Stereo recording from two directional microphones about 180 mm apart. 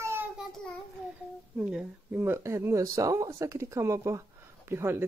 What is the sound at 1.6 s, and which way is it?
Speech, 5° right (ahead or behind).